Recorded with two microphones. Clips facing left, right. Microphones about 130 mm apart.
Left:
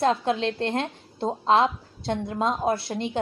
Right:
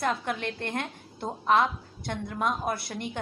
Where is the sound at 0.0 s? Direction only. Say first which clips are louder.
Left 7 dB; 25° left (ahead or behind).